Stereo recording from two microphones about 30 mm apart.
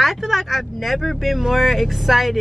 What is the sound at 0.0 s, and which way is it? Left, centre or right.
Speech, centre.